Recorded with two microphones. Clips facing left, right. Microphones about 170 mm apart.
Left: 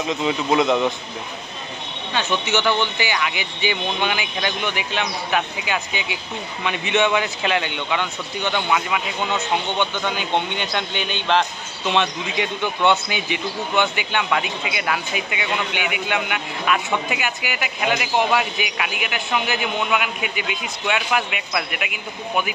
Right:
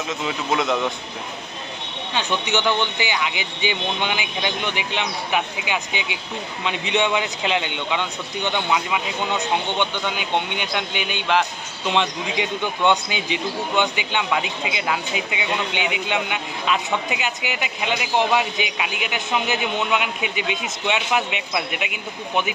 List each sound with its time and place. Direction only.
0.1 s a man's voice: centre (ahead or behind)
2.1 s a man's voice: 15° right (ahead or behind)